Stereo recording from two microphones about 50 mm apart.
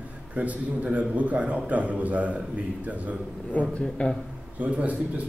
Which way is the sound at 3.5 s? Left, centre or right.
Left.